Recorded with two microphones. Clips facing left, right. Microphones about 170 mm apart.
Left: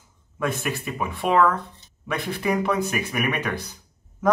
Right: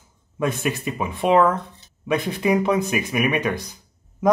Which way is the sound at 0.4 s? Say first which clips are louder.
Right 3 dB; 20° right (ahead or behind).